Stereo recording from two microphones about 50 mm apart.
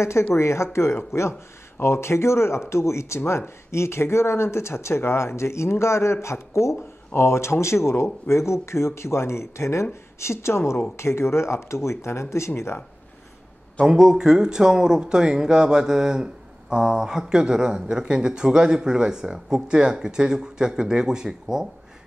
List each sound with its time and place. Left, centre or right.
0.3 s speech: left
13.8 s speech: centre